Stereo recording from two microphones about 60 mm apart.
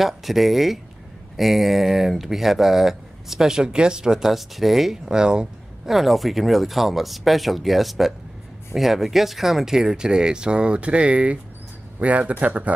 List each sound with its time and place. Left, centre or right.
0.0 s speech: centre
5.9 s speech: centre; by 12.7 s right